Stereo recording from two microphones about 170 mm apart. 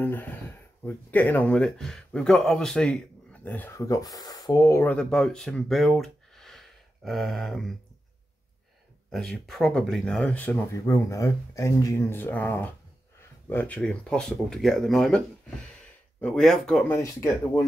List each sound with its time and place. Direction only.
0.0 s speech: 10° left (ahead or behind)
9.1 s speech: centre (ahead or behind)
16.9 s speech: 15° left (ahead or behind)